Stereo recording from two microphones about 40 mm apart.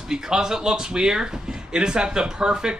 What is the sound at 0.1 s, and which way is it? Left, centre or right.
Speech, centre.